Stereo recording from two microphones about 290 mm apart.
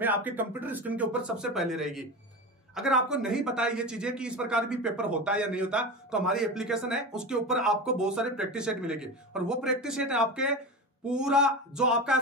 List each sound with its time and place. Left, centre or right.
0.0 s speech: centre